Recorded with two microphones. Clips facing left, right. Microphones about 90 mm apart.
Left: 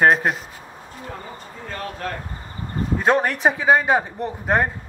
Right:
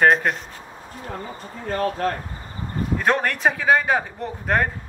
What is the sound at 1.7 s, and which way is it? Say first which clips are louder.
Speech: right 8 dB; 45° right (ahead or behind).